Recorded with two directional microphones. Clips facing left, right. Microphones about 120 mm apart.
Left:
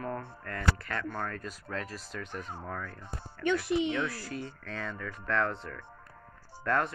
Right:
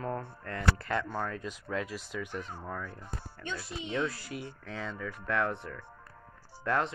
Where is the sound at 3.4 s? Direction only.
70° left (ahead or behind).